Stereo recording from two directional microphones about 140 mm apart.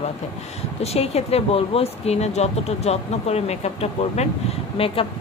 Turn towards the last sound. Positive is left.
turn(degrees=40)  # may be behind; listen again after turning